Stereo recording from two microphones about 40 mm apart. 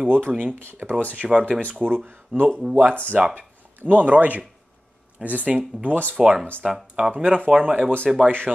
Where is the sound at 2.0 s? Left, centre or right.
Right.